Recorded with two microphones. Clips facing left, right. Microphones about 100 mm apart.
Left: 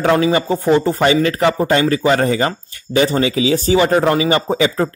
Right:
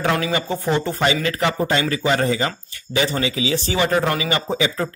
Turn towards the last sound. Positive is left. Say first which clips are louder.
# left 6 dB
turn(degrees=40)  # may be behind; listen again after turning